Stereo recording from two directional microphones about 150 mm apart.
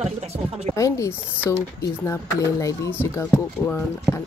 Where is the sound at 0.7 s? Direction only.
20° left (ahead or behind).